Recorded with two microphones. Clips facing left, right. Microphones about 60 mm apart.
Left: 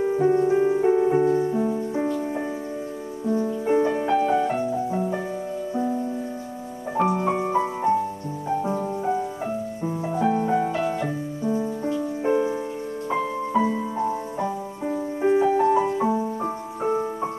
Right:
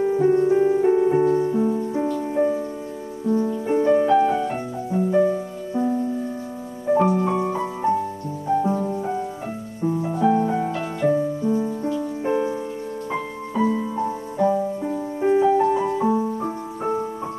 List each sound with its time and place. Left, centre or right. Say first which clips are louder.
0.0 s music: right 2 dB; centre
4.3 s piano: left 2 dB; centre
5.7 s music: right 4 dB; centre
7.0 s music: even; centre
8.6 s music: right 1 dB; centre
11.4 s music: right 3 dB; centre
11.8 s music: even; centre
13.5 s music: right 3 dB; centre